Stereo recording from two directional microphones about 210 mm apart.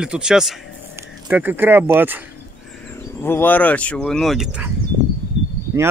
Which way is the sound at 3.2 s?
10° left (ahead or behind).